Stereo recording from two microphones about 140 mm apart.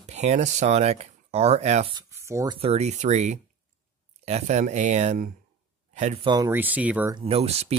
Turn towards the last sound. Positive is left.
turn(degrees=-45)  # may be behind; listen again after turning